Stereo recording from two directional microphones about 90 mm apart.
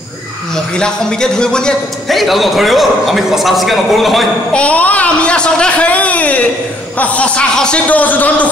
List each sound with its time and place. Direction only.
0.7 s a man's voice: 10° left (ahead or behind)
4.6 s a man's voice: 15° left (ahead or behind)